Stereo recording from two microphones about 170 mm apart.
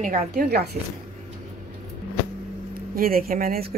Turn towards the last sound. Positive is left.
turn(degrees=-60)  # may be behind; listen again after turning